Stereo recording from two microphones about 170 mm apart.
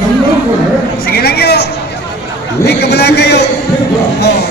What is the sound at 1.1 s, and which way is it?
A man's voice, 70° left (ahead or behind).